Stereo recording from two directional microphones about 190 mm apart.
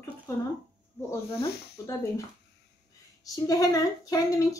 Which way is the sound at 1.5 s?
60° left (ahead or behind).